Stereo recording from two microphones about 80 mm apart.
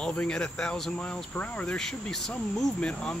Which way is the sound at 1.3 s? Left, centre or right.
Left.